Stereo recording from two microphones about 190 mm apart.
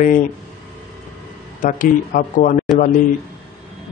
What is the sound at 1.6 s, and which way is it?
Speech, 45° left (ahead or behind).